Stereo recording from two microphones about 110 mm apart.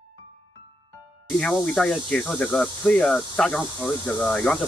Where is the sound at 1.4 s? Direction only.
10° left (ahead or behind).